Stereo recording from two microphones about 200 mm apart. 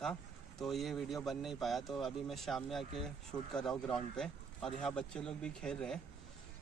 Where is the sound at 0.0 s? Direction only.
Centre (ahead or behind).